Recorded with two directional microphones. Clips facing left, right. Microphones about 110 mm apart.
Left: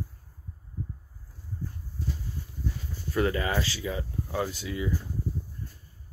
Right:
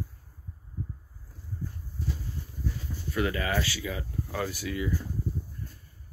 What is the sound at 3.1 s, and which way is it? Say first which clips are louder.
Speech: left 2 dB; 35° left (ahead or behind).